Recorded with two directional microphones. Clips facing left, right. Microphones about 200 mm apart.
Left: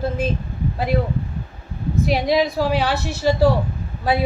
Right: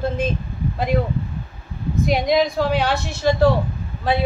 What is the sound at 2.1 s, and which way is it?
Speech, 5° left (ahead or behind).